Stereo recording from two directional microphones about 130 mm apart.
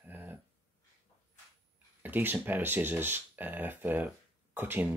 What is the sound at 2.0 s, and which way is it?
Speech, 15° right (ahead or behind).